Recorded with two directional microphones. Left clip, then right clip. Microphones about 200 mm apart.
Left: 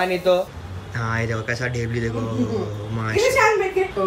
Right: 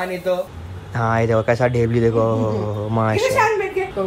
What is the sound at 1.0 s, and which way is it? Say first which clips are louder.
Speech: right 8 dB; 15° right (ahead or behind).